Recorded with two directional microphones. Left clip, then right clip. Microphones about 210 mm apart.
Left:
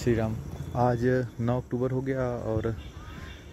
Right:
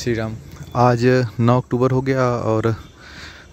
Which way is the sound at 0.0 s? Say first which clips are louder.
Right 5 dB; 20° right (ahead or behind).